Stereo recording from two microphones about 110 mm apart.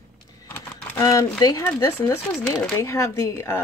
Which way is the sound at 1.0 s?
35° left (ahead or behind).